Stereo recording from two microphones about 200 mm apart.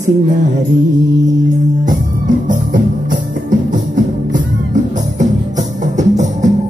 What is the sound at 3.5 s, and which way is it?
Music, 40° right (ahead or behind).